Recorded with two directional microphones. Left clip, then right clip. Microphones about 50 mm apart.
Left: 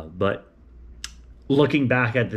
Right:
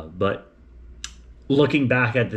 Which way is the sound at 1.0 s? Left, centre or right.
Centre.